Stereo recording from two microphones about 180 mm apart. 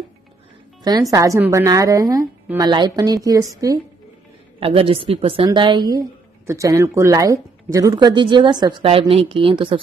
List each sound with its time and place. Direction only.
1.1 s speech: 20° right (ahead or behind)
4.6 s speech: 30° right (ahead or behind)